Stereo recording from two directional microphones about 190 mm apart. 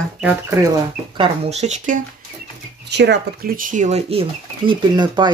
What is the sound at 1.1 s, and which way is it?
Speech, 30° right (ahead or behind).